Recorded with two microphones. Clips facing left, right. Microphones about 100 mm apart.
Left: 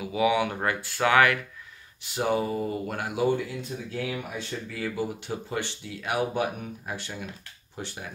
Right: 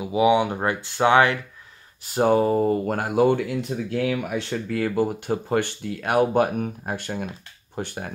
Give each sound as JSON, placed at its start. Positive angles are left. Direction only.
{"t": 0.0, "sound": "speech", "side_deg": -25}
{"t": 2.0, "sound": "speech", "side_deg": -45}
{"t": 3.3, "sound": "speech", "side_deg": -70}